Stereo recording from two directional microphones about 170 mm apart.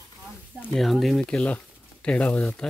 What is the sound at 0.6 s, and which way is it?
Speech, centre (ahead or behind).